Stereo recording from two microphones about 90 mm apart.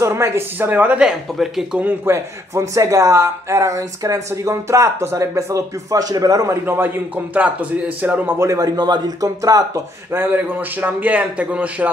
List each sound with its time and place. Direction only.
0.0 s a man's voice: 30° right (ahead or behind)
1.0 s speech: 10° right (ahead or behind)
1.9 s speech: 25° right (ahead or behind)
8.0 s a man's voice: 20° right (ahead or behind)
8.4 s speech: 40° right (ahead or behind)
10.1 s a man's voice: 20° right (ahead or behind)